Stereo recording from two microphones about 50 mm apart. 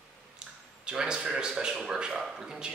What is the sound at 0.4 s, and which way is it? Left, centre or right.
Speech, centre.